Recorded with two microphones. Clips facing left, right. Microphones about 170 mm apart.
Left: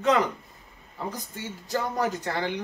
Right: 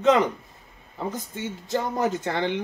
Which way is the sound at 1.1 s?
20° right (ahead or behind).